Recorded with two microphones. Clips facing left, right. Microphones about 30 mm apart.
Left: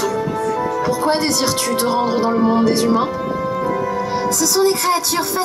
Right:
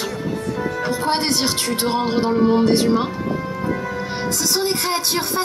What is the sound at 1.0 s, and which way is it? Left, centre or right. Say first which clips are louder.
Speech: left 1 dB; right.